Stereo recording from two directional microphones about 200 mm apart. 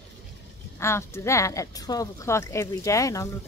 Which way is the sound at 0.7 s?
15° left (ahead or behind).